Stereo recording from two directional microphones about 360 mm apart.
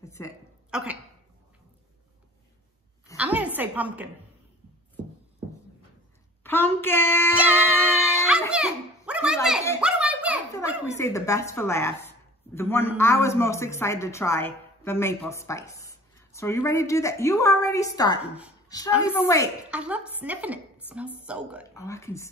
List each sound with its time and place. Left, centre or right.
0.0 s a sound: centre
0.7 s speech: centre
3.2 s a sound: centre
6.4 s a woman's voice: centre
7.4 s a sound: centre
10.5 s a woman's voice: centre
18.9 s a woman's voice: centre
19.2 s a woman's voice: centre
19.7 s a woman's voice: centre
21.7 s a woman's voice: centre